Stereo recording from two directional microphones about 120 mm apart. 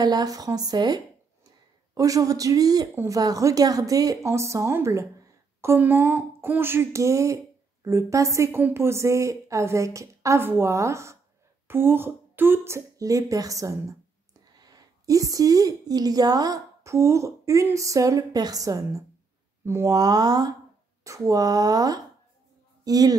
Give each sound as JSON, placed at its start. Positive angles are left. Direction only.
{"t": 0.0, "sound": "a woman's voice", "side_deg": -35}